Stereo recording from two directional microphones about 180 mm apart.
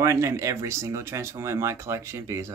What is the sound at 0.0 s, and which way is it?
Speech, 15° right (ahead or behind).